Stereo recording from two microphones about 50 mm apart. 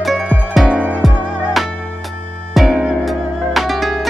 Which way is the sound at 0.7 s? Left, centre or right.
Right.